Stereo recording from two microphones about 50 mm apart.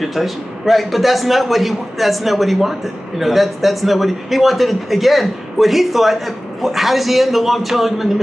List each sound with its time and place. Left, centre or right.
0.0 s a man's voice: centre